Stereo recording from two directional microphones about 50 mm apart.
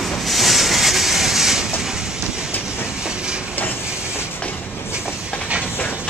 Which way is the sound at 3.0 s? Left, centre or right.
Centre.